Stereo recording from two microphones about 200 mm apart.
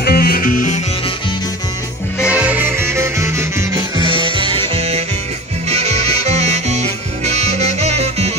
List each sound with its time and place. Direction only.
0.0 s music: 50° left (ahead or behind)
2.1 s music: 5° right (ahead or behind); by 8.3 s 30° right (ahead or behind)